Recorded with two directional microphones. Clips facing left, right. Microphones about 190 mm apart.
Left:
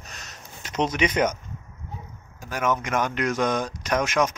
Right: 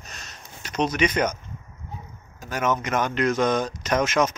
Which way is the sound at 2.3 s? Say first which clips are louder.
Right 1 dB; 10° left (ahead or behind).